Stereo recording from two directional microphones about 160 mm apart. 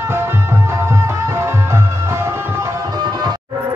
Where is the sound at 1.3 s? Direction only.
15° right (ahead or behind).